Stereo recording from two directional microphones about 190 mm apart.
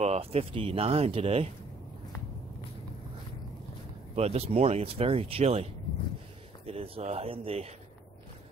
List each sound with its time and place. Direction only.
0.0 s speech: 35° right (ahead or behind)
4.1 s speech: 35° right (ahead or behind)